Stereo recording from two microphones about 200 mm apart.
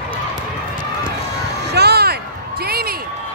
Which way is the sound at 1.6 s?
55° right (ahead or behind).